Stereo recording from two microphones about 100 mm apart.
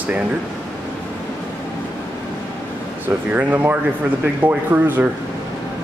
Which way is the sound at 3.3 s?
15° right (ahead or behind).